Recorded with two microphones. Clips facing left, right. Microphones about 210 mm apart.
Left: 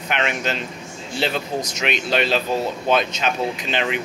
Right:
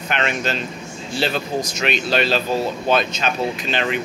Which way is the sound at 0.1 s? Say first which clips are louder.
Right 1 dB; 15° left (ahead or behind).